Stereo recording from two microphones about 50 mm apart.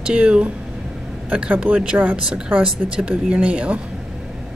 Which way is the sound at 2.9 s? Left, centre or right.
Centre.